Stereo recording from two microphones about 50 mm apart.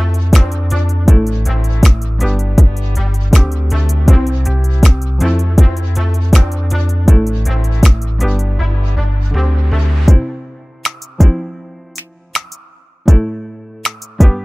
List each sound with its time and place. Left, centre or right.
0.1 s music: centre